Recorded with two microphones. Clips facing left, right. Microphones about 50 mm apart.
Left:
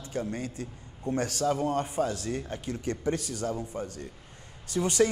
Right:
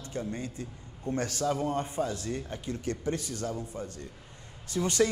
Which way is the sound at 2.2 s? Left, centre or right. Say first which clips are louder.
Left 2 dB; left.